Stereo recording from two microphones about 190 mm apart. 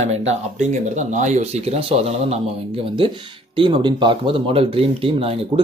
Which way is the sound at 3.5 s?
25° right (ahead or behind).